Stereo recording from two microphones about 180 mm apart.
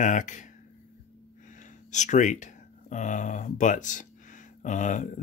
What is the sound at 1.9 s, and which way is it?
Speech, 45° left (ahead or behind).